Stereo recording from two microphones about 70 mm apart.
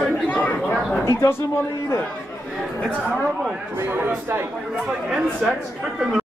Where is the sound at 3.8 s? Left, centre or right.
Right.